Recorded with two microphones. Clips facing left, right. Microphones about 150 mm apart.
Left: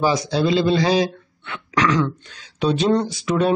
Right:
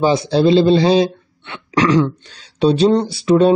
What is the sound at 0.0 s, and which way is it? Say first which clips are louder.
Speech: right 5 dB; 30° right (ahead or behind).